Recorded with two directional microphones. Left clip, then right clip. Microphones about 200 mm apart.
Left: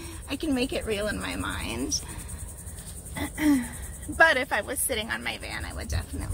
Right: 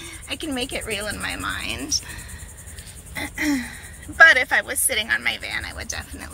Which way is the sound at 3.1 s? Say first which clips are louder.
Right 1 dB; 5° left (ahead or behind).